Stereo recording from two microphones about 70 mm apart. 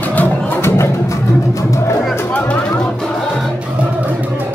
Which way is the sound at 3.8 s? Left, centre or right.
Right.